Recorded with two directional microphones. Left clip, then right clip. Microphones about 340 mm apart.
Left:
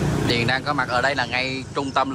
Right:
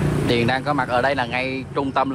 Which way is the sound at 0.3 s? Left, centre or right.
Centre.